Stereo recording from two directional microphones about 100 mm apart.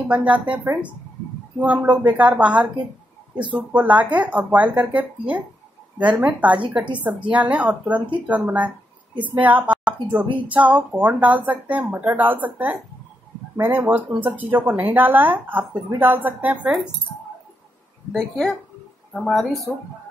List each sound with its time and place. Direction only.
0.1 s speech: 15° right (ahead or behind)
18.1 s a woman's voice: 5° left (ahead or behind)